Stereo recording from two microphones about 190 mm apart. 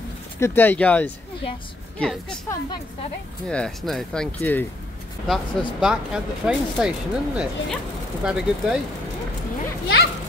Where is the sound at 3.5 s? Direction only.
5° left (ahead or behind).